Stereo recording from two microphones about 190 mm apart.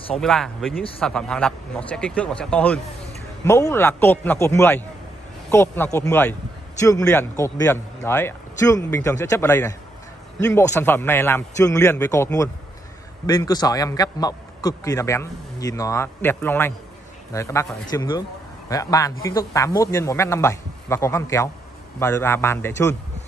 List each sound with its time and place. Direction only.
0.2 s a man's voice: centre (ahead or behind)